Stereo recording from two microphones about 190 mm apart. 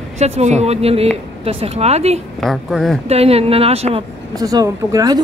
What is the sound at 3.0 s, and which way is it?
Speech, 30° right (ahead or behind).